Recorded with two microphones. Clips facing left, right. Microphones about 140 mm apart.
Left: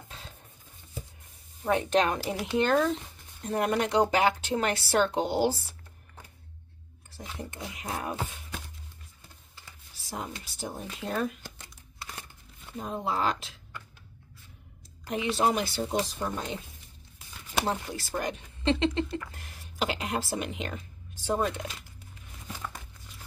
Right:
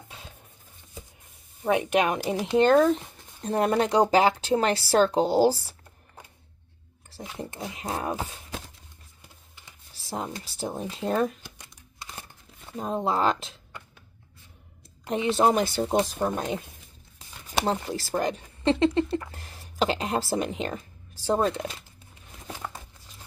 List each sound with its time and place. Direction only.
1.6 s speech: 15° right (ahead or behind)
2.3 s speech: 45° right (ahead or behind)
3.4 s speech: 30° right (ahead or behind)
7.7 s speech: 30° right (ahead or behind)
10.0 s speech: 30° right (ahead or behind)
12.7 s speech: 35° right (ahead or behind)
15.0 s speech: 35° right (ahead or behind)
17.6 s speech: 30° right (ahead or behind)
21.4 s crumpling: 30° right (ahead or behind)